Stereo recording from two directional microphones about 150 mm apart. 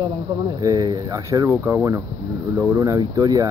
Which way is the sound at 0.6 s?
25° right (ahead or behind).